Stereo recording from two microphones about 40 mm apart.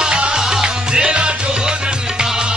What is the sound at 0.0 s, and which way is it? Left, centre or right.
Music, centre.